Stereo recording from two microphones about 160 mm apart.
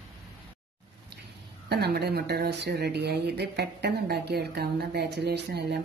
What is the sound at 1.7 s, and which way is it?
Speech, 90° right.